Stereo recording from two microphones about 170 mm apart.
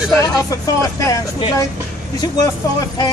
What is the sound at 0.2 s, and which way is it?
Speech, 20° left (ahead or behind).